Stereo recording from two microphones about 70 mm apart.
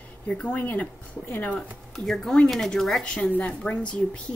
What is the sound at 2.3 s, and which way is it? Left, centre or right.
A woman's voice, centre.